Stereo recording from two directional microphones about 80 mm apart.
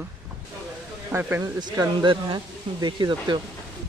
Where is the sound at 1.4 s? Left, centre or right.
Right.